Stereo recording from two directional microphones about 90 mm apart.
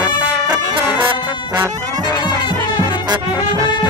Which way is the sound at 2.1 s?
55° left (ahead or behind).